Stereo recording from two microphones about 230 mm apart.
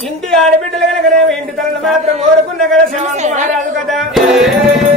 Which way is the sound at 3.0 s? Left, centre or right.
Right.